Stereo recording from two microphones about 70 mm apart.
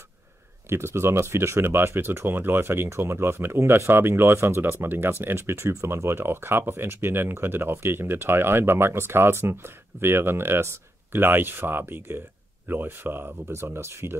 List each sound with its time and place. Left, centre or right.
0.7 s speech: right